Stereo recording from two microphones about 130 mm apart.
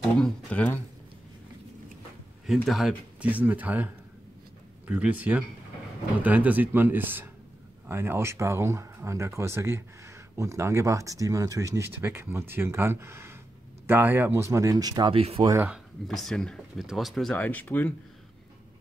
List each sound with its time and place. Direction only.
0.2 s speech: 10° left (ahead or behind)
2.4 s speech: centre (ahead or behind)
3.2 s speech: 10° right (ahead or behind); by 15.1 s 30° right (ahead or behind)
15.1 s speech: 45° right (ahead or behind)
15.7 s speech: centre (ahead or behind)
17.4 s speech: 15° left (ahead or behind)